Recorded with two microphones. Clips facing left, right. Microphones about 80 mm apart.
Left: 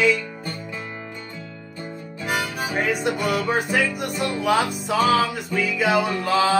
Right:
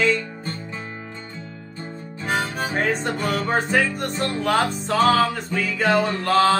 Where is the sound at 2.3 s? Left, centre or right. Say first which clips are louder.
Right 2 dB; right.